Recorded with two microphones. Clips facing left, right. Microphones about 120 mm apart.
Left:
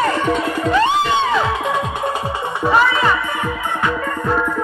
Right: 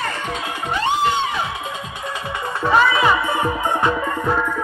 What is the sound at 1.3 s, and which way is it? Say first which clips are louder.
Music: left 8 dB; 90° left.